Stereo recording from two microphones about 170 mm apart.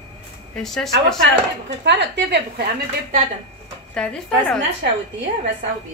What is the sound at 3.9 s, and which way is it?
Speech, 5° left (ahead or behind).